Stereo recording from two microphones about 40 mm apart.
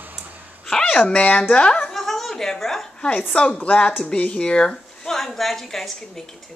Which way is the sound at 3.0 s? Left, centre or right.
Left.